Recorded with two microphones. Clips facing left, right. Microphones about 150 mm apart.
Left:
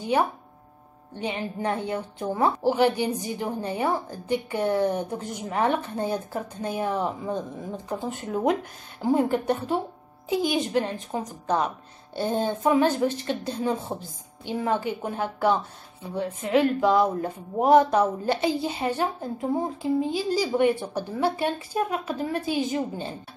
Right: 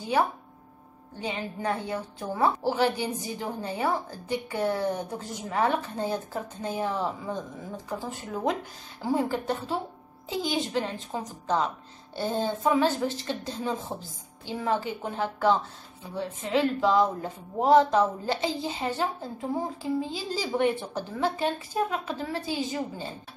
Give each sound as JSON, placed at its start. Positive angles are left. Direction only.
{"t": 1.2, "sound": "a woman's voice", "side_deg": 20}